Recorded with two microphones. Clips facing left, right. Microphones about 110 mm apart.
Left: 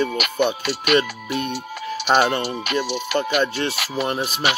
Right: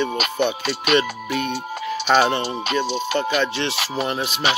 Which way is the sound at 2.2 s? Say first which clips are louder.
Even; 25° right (ahead or behind).